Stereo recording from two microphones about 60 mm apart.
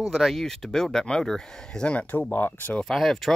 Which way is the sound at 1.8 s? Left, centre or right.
Centre.